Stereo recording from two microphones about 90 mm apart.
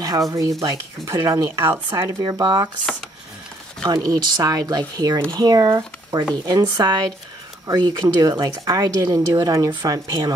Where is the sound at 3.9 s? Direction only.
45° right (ahead or behind).